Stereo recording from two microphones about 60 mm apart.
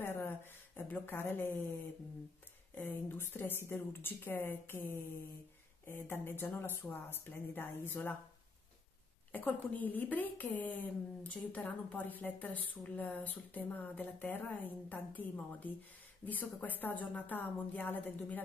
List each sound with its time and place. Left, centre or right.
0.0 s a sound: left
0.9 s a woman's voice: left
2.8 s a woman's voice: left
9.3 s a woman's voice: left